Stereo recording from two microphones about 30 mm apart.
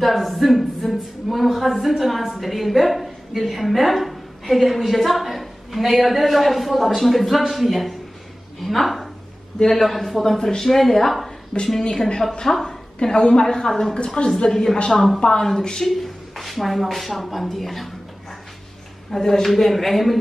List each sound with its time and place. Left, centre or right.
0.0 s a woman's voice: centre
10.2 s speech: centre
11.5 s a woman's voice: left
12.4 s speech: centre
13.0 s a woman's voice: left
13.7 s speech: centre
14.0 s a woman's voice: left
14.4 s speech: centre
14.9 s speech: centre
15.1 s a woman's voice: left
16.0 s speech: centre
19.1 s speech: centre